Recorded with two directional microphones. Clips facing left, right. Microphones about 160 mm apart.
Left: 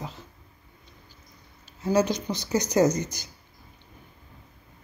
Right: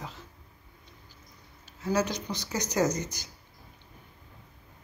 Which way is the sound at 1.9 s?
20° left (ahead or behind).